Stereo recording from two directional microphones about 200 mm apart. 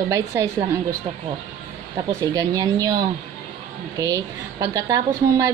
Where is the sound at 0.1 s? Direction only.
15° right (ahead or behind).